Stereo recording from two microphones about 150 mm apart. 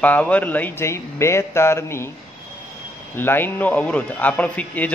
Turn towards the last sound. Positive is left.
turn(degrees=10)  # may be behind; listen again after turning